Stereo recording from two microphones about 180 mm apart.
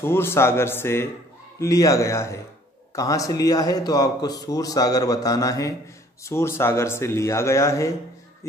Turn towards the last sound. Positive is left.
turn(degrees=15)  # may be behind; listen again after turning